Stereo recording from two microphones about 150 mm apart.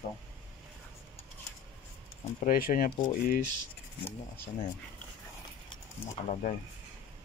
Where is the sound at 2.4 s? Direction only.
70° left (ahead or behind).